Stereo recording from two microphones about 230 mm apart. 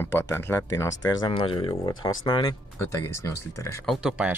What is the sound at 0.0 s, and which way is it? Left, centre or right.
Speech, centre.